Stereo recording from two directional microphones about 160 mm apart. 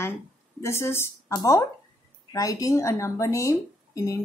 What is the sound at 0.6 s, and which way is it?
A woman's voice, 15° left (ahead or behind).